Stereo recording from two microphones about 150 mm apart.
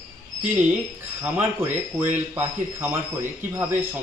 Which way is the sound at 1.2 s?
15° right (ahead or behind).